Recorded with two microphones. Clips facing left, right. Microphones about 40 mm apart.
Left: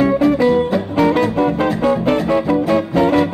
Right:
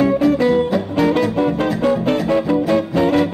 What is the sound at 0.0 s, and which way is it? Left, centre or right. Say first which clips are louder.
Music: left 1 dB; centre.